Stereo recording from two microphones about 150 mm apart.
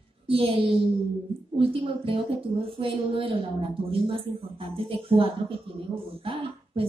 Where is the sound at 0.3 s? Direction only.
40° right (ahead or behind).